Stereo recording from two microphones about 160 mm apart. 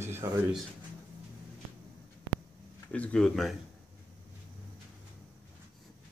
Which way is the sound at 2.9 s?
5° left (ahead or behind).